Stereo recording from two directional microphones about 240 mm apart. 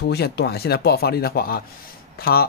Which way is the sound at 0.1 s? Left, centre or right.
Left.